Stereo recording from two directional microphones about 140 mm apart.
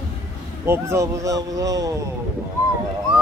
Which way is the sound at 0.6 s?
20° right (ahead or behind).